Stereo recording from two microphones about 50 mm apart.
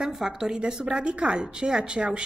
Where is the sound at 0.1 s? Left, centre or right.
Centre.